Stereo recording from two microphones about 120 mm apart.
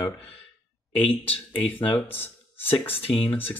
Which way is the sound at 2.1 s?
50° left (ahead or behind).